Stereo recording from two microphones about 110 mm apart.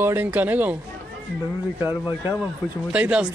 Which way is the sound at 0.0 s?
20° right (ahead or behind).